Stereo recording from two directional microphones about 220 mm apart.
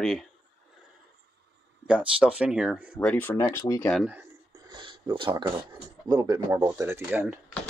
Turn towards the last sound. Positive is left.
turn(degrees=-5)  # may be behind; listen again after turning